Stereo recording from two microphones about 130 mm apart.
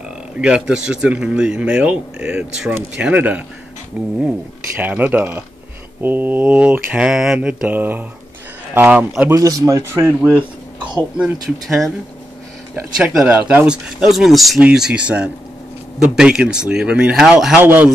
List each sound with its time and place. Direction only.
0.4 s speech: 5° right (ahead or behind)
9.3 s a man's voice: 25° right (ahead or behind); by 11.3 s 10° right (ahead or behind)
11.3 s a man's voice: 30° right (ahead or behind)
12.9 s speech: 5° right (ahead or behind)
17.6 s speech: 15° right (ahead or behind)